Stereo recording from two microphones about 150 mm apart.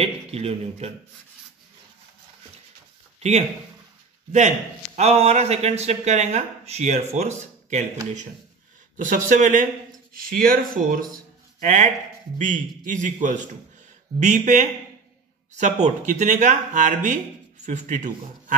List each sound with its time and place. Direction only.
0.0 s a man's voice: 40° right (ahead or behind)
3.2 s a man's voice: 50° right (ahead or behind)
8.9 s a man's voice: 55° right (ahead or behind)
10.1 s speech: 75° right (ahead or behind)
11.6 s speech: 55° right (ahead or behind)